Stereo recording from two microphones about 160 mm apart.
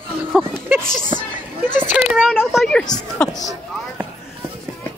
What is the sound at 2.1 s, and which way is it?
Speech, 5° right (ahead or behind).